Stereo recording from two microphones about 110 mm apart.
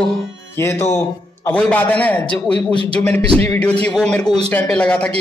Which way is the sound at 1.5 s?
15° left (ahead or behind).